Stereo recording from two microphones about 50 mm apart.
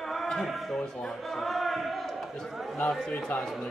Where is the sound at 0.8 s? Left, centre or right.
Centre.